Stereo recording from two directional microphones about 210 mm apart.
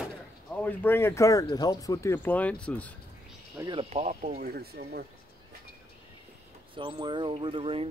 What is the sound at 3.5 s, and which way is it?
Speech, 20° right (ahead or behind).